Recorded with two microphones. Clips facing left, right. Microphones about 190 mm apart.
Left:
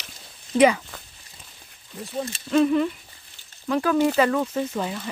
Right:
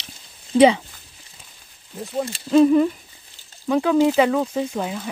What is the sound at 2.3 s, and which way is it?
Speech, 30° right (ahead or behind).